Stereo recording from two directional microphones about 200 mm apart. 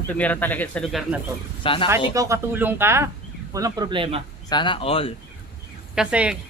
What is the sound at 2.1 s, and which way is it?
Speech, 15° right (ahead or behind).